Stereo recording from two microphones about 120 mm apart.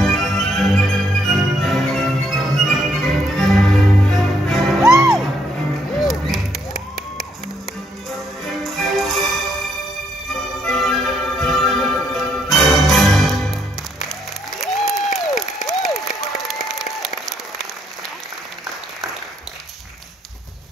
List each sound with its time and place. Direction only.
0.0 s music: centre (ahead or behind)
4.8 s music: 25° right (ahead or behind)
5.9 s music: centre (ahead or behind)
10.6 s music: centre (ahead or behind)
14.6 s applause: centre (ahead or behind)